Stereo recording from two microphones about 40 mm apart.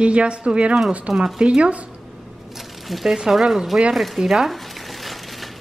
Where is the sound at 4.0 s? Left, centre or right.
Centre.